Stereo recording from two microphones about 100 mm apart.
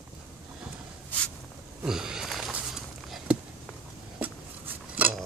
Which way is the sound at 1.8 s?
5° right (ahead or behind).